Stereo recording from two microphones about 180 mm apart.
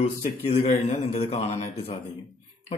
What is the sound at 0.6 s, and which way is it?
A man's voice, 35° left (ahead or behind).